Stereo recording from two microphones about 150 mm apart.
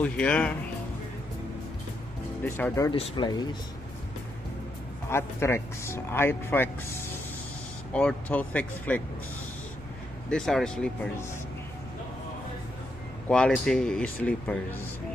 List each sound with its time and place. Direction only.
0.0 s speech: 10° left (ahead or behind)
2.4 s speech: 15° left (ahead or behind)
2.9 s speech: 35° left (ahead or behind)
5.1 s speech: 15° left (ahead or behind)
7.9 s speech: 5° left (ahead or behind)
10.3 s speech: 5° left (ahead or behind)
13.3 s speech: 5° left (ahead or behind)